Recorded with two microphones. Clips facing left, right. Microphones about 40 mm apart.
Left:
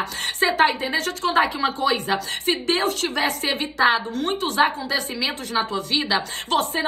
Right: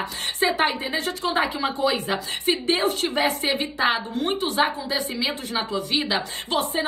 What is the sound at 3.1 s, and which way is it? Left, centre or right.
Speech, right.